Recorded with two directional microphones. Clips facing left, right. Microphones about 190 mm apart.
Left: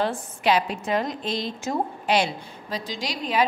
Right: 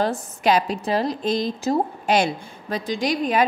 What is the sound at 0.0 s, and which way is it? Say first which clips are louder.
A woman's voice: right 3 dB; 40° right (ahead or behind).